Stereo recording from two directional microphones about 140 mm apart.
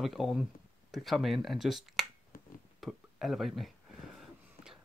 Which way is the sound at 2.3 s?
90° left.